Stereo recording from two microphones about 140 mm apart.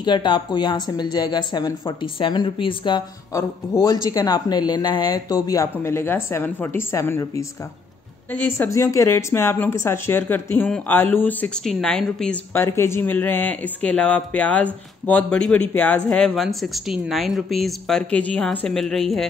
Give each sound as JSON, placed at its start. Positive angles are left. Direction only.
{"t": 0.0, "sound": "a woman's voice", "side_deg": 30}
{"t": 12.6, "sound": "speech", "side_deg": 20}